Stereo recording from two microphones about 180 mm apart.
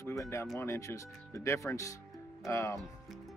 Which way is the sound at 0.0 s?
15° left (ahead or behind).